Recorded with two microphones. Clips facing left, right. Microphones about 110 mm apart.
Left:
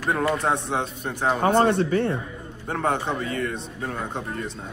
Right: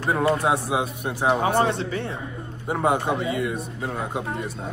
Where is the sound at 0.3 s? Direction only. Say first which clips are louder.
Right 2 dB; 5° right (ahead or behind).